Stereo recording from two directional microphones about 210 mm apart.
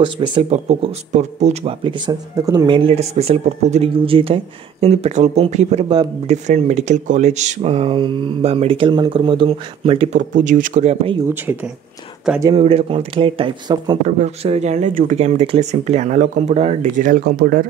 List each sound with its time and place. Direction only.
0.0 s speech: 20° right (ahead or behind)
11.2 s speech: 10° right (ahead or behind)
12.5 s speech: 30° right (ahead or behind)
14.0 s speech: 35° right (ahead or behind)